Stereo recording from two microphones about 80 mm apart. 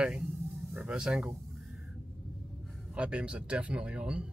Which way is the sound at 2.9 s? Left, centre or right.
Centre.